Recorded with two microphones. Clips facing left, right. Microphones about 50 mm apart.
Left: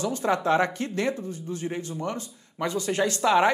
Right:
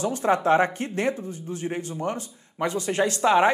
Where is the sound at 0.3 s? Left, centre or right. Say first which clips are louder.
Right 3 dB; right.